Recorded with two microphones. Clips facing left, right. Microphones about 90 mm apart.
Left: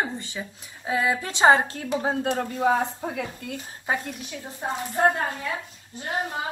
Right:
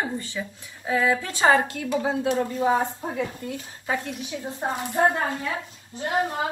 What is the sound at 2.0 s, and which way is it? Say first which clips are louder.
Speech: right 1 dB; 50° left (ahead or behind).